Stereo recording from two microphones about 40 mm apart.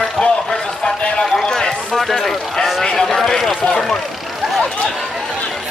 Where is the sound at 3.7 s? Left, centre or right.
Centre.